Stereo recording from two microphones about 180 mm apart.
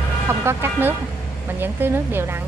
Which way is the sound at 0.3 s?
15° right (ahead or behind).